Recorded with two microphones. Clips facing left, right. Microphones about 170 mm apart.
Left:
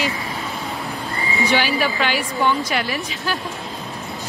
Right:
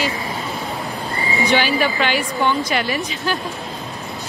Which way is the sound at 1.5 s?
5° left (ahead or behind).